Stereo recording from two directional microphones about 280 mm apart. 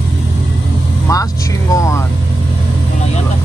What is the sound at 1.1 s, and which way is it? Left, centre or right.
Vehicle, centre.